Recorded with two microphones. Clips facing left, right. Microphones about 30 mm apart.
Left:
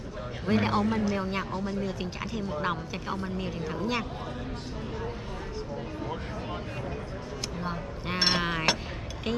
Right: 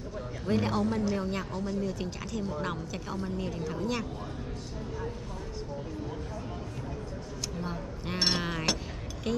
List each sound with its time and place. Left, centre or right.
0.5 s a man's voice: left
1.1 s a woman's voice: left
7.6 s a woman's voice: left